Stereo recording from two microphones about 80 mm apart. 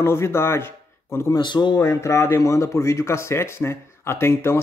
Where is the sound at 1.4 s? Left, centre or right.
Left.